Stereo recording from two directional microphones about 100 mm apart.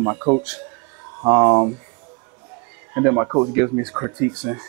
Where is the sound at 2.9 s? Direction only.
25° right (ahead or behind).